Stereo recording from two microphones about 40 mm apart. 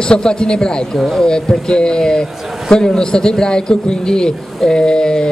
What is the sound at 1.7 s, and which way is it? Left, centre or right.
Speech, left.